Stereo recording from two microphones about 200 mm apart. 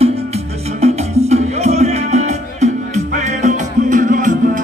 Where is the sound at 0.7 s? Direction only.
30° right (ahead or behind).